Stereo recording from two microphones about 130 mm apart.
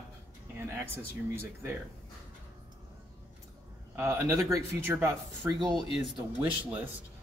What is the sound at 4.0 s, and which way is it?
A man's voice, 25° right (ahead or behind).